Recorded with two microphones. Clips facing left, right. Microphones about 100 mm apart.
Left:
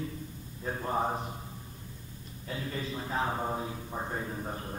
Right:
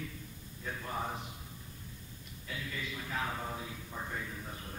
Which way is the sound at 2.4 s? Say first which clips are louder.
Left 5 dB; 35° left (ahead or behind).